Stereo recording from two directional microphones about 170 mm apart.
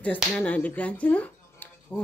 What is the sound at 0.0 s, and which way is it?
A woman's voice, 10° left (ahead or behind).